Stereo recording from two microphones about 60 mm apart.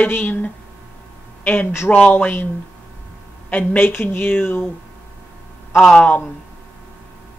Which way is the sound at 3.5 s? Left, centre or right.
Left.